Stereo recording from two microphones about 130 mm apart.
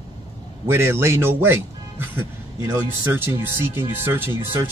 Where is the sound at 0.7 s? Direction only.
20° right (ahead or behind).